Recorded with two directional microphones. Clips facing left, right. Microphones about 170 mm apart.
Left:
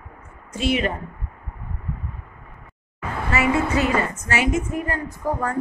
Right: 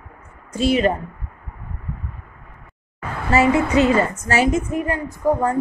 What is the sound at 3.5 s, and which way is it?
Speech, 20° right (ahead or behind).